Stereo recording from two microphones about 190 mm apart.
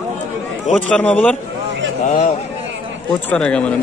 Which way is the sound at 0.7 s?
5° left (ahead or behind).